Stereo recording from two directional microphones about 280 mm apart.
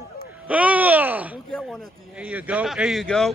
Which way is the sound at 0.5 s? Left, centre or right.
Centre.